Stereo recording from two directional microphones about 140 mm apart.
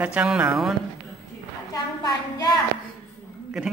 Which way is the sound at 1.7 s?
30° left (ahead or behind).